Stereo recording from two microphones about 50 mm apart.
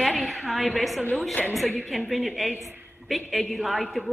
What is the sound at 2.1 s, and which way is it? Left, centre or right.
A woman's voice, centre.